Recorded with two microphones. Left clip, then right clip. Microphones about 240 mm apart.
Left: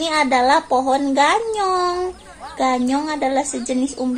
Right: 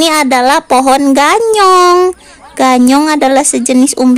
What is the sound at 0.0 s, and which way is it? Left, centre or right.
Speech, right.